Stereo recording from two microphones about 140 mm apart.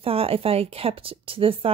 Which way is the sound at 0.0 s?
45° right (ahead or behind).